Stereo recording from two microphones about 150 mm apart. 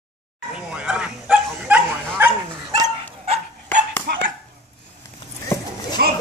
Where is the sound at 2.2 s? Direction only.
15° right (ahead or behind).